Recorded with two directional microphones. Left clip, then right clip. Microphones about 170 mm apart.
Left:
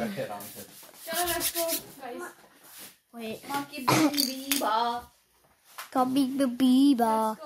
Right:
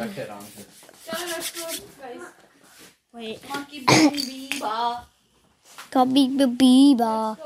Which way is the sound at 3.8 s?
35° right (ahead or behind).